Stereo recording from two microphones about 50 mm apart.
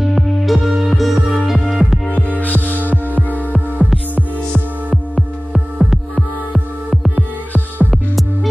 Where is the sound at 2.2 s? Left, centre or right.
Left.